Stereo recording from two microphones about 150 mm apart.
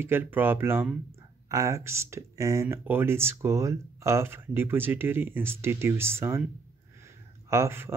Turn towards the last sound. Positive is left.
turn(degrees=-15)  # may be behind; listen again after turning